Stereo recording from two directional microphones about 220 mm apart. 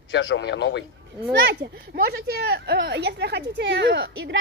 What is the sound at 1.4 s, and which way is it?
A child's voice, 45° right (ahead or behind).